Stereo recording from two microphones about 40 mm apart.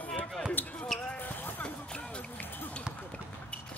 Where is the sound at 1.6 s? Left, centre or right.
Left.